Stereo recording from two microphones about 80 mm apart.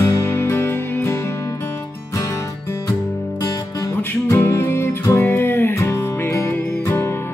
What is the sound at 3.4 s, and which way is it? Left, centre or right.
Music, left.